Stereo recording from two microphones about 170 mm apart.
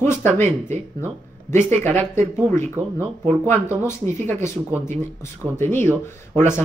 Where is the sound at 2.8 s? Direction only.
15° right (ahead or behind).